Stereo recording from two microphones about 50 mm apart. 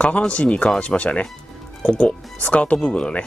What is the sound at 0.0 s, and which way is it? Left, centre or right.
Speech, left.